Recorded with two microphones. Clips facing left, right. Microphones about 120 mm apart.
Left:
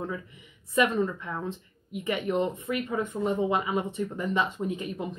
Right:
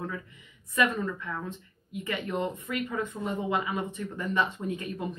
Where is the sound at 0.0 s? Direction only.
20° left (ahead or behind).